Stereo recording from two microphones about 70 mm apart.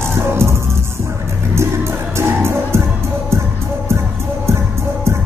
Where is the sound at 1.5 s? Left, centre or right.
Right.